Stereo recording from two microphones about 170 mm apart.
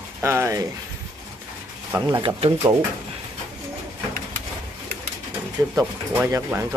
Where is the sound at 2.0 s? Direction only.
25° right (ahead or behind).